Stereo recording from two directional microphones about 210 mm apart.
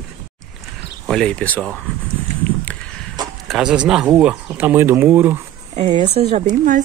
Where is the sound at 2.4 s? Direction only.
5° left (ahead or behind).